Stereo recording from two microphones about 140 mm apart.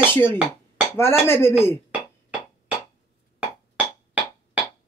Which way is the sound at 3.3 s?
10° right (ahead or behind).